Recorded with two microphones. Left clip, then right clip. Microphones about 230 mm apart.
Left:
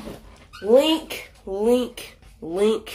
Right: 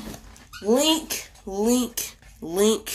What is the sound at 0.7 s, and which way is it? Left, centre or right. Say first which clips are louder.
Speech: left 4 dB; right.